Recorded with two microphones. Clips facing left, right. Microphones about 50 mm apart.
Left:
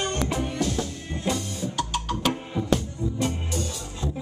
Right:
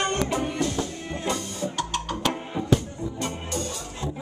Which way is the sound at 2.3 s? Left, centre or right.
Centre.